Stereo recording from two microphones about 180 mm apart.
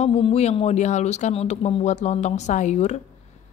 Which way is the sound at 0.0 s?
35° left (ahead or behind).